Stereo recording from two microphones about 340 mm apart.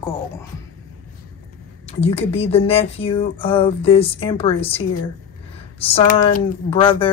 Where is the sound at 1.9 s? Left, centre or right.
Centre.